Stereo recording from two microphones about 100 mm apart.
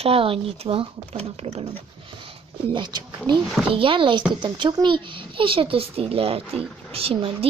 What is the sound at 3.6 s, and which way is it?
A child's voice, 60° right (ahead or behind).